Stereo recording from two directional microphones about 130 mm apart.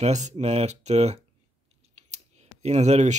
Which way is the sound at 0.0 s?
60° right (ahead or behind).